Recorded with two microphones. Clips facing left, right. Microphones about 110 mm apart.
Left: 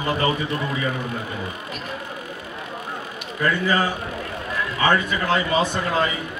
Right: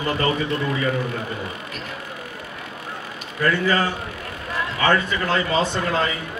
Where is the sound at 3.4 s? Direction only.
15° left (ahead or behind).